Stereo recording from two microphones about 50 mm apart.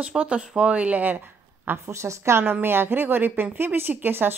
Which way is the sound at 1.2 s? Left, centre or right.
Right.